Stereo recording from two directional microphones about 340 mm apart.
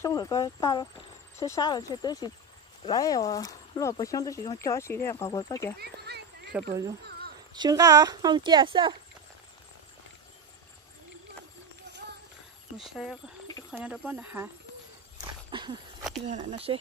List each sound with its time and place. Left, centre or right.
0.0 s speech: centre
5.8 s speech: right
6.5 s speech: centre
12.7 s speech: centre
15.5 s a sound: centre
16.3 s speech: centre